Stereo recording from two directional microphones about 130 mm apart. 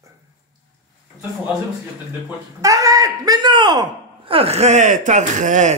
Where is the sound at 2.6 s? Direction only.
25° right (ahead or behind).